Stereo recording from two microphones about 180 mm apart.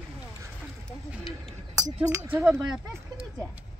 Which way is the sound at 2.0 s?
15° right (ahead or behind).